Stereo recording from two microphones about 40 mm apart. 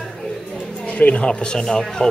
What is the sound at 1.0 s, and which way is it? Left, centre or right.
Speech, left.